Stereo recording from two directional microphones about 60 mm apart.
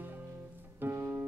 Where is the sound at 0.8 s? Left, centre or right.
Right.